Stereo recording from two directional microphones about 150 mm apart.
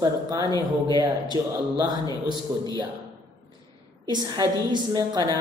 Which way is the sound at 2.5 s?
20° right (ahead or behind).